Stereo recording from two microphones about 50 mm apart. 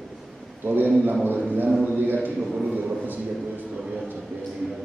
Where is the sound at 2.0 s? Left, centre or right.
Right.